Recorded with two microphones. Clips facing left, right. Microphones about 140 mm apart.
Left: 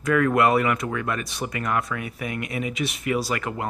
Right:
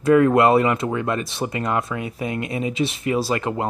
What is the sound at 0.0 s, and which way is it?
Speech, 25° right (ahead or behind).